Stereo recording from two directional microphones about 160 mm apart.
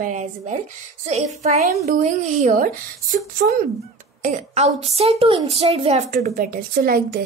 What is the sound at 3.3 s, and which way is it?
Speech, 65° right (ahead or behind).